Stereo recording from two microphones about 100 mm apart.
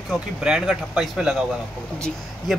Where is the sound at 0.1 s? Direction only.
5° right (ahead or behind).